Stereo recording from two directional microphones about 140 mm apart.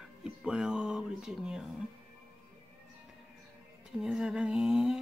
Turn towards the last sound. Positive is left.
turn(degrees=-5)  # may be behind; listen again after turning